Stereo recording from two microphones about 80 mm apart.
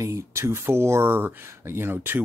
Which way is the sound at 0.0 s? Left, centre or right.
Right.